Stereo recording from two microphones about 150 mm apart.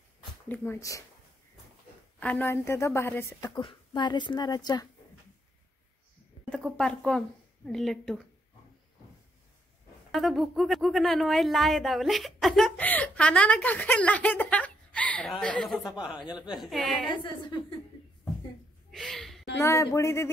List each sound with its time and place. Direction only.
0.5 s a woman's voice: 20° left (ahead or behind)
2.1 s a woman's voice: 10° left (ahead or behind); by 4.8 s 25° left (ahead or behind)
6.8 s a woman's voice: 5° left (ahead or behind)
10.1 s speech: centre (ahead or behind)
17.2 s a woman's voice: 30° left (ahead or behind)
18.9 s a sound: centre (ahead or behind)
19.6 s a woman's voice: 20° left (ahead or behind)